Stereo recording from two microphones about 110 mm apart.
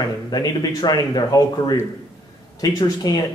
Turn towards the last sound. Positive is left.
turn(degrees=35)  # may be behind; listen again after turning